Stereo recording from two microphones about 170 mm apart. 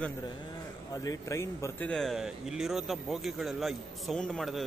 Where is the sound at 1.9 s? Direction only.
Centre (ahead or behind).